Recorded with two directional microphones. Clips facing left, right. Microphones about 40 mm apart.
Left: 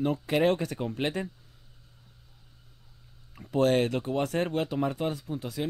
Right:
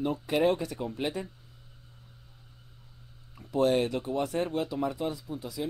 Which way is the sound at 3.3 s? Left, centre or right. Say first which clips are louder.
Left 1 dB; left.